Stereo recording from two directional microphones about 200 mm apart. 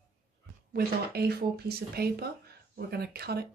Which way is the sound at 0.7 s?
50° right (ahead or behind).